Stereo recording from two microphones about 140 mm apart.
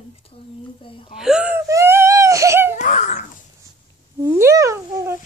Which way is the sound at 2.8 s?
60° left (ahead or behind).